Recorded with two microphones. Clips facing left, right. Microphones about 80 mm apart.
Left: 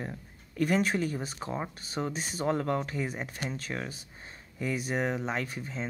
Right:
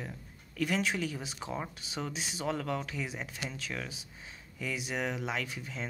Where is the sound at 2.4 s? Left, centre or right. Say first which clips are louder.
Left 5 dB; left.